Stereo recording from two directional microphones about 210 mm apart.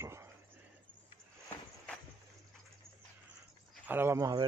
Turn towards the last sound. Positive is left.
turn(degrees=-15)  # may be behind; listen again after turning